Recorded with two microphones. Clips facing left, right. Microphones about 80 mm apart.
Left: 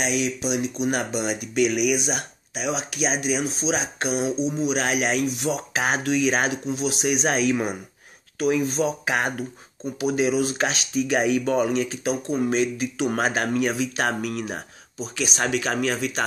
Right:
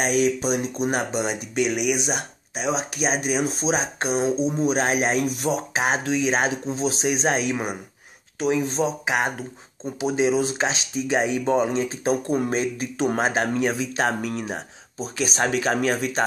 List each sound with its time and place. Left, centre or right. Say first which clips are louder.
0.0 s speech: right 4 dB; right
5.7 s speech: even; right
13.1 s speech: right 1 dB; right